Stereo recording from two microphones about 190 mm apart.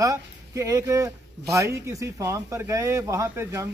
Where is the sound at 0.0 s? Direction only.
15° right (ahead or behind).